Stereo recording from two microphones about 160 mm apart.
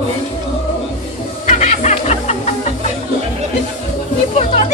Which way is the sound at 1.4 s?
50° left (ahead or behind).